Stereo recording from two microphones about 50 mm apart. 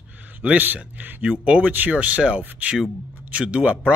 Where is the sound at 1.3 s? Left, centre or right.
Right.